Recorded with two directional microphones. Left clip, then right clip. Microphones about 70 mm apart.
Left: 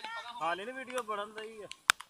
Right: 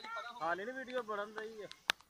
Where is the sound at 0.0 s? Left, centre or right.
Left.